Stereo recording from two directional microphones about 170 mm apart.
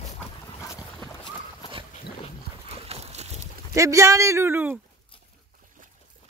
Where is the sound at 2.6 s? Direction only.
40° right (ahead or behind).